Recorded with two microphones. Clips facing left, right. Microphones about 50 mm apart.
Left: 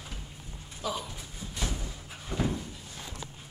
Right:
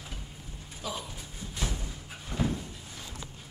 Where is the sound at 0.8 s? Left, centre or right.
Centre.